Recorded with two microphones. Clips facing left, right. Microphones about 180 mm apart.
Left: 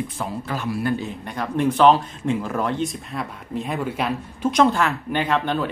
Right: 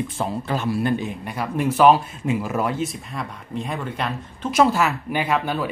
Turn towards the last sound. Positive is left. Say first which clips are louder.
# left 1 dB
turn(degrees=-10)  # may be behind; listen again after turning